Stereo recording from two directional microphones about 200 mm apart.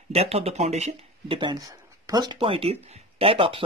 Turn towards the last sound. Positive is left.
turn(degrees=-25)  # may be behind; listen again after turning